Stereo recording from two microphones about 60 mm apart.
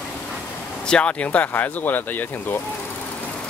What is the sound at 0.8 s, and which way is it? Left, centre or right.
Speech, centre.